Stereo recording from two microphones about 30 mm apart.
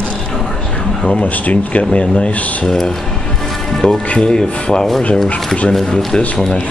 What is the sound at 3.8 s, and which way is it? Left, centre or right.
Speech, centre.